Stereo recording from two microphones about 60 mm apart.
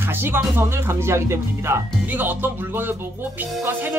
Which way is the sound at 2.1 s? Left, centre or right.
Right.